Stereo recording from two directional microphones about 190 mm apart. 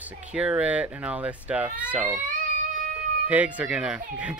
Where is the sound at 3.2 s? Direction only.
10° right (ahead or behind).